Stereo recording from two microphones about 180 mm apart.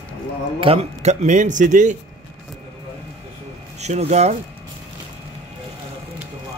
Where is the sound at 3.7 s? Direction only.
35° right (ahead or behind).